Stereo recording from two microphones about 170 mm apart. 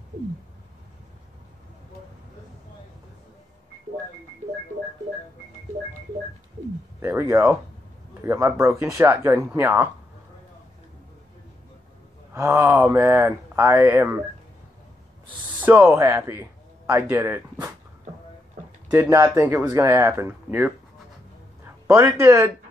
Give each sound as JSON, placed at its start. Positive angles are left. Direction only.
{"t": 7.0, "sound": "speech", "side_deg": -15}
{"t": 12.4, "sound": "speech", "side_deg": -15}
{"t": 15.2, "sound": "speech", "side_deg": -10}
{"t": 18.9, "sound": "speech", "side_deg": -15}
{"t": 21.6, "sound": "a sound", "side_deg": -15}
{"t": 22.2, "sound": "speech", "side_deg": -15}